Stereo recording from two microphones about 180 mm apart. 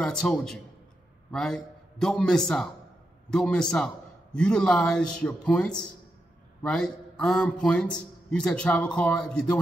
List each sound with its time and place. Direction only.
0.0 s a man's voice: 5° left (ahead or behind)